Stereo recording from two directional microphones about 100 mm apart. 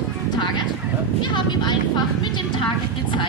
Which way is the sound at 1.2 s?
50° left (ahead or behind).